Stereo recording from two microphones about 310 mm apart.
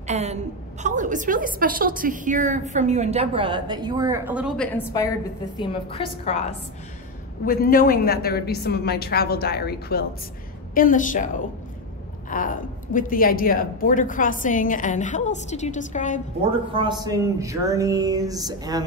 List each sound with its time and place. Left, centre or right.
0.0 s a woman's voice: right; by 5.1 s centre
5.6 s a woman's voice: centre
12.3 s a woman's voice: left
16.7 s a sound: centre